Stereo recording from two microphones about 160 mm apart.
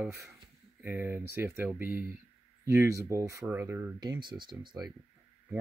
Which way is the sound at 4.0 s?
25° right (ahead or behind).